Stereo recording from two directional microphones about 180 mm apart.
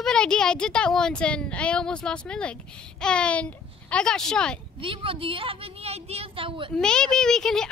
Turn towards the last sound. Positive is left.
turn(degrees=5)  # may be behind; listen again after turning